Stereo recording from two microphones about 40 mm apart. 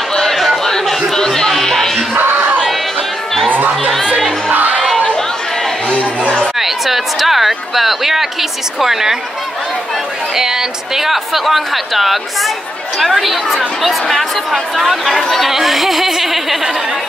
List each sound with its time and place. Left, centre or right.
0.1 s chatter: centre
1.1 s music: centre
2.1 s crowd: right
3.5 s music: right
4.9 s chatter: centre
6.6 s a sound: centre
10.3 s speech: centre